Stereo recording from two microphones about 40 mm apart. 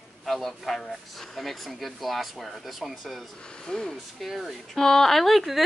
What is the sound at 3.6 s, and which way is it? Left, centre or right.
Speech, centre.